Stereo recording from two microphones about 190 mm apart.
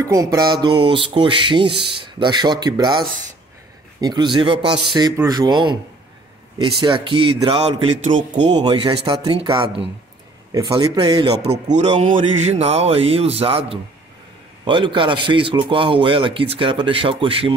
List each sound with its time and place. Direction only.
0.0 s music: 15° right (ahead or behind)
6.8 s music: 25° right (ahead or behind)
11.6 s speech: 40° right (ahead or behind)
14.6 s music: 25° right (ahead or behind)